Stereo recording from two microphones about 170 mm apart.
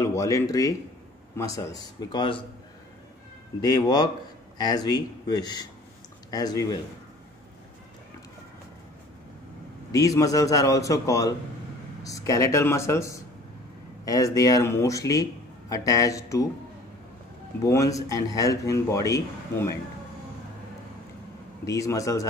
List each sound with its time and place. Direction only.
0.0 s speech: 20° left (ahead or behind)
3.6 s speech: 25° left (ahead or behind)
9.9 s speech: 20° left (ahead or behind)
17.6 s speech: 20° left (ahead or behind)
21.6 s speech: 20° left (ahead or behind)